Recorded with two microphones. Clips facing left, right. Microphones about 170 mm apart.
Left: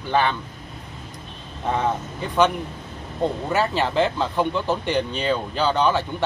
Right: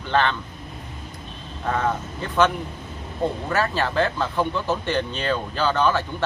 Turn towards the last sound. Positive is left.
turn(degrees=15)  # may be behind; listen again after turning